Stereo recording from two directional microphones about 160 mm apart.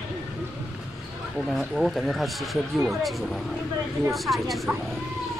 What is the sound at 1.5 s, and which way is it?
Speech, centre (ahead or behind).